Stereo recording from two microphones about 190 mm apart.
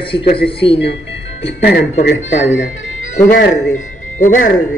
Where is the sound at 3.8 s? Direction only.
45° left (ahead or behind).